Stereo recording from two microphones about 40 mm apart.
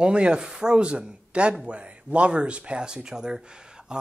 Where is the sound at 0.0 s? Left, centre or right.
Right.